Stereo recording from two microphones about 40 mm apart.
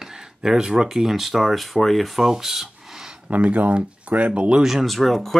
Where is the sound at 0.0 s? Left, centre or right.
Centre.